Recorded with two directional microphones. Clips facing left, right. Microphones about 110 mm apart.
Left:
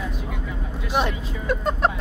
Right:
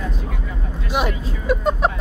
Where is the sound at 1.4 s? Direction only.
15° right (ahead or behind).